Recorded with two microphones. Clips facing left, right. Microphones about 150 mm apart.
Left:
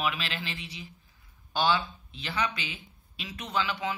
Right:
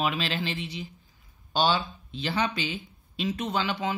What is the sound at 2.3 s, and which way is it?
Speech, 30° right (ahead or behind).